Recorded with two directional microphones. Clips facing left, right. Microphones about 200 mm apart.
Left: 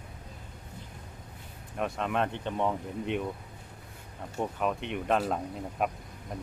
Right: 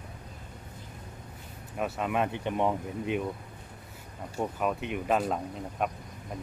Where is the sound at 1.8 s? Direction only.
5° right (ahead or behind).